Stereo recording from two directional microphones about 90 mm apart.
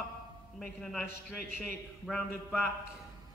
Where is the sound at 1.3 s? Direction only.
20° left (ahead or behind).